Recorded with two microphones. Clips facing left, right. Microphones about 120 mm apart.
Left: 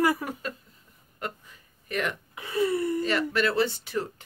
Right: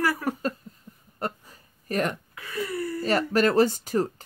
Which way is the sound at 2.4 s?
25° left (ahead or behind).